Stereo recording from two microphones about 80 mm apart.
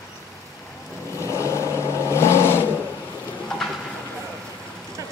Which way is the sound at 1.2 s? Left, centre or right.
Left.